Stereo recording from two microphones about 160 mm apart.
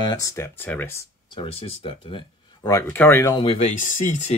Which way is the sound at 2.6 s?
15° left (ahead or behind).